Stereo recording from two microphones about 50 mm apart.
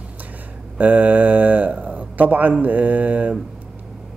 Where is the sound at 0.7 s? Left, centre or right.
Right.